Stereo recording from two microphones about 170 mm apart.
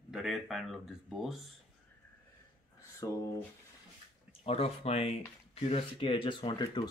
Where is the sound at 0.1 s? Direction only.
Centre (ahead or behind).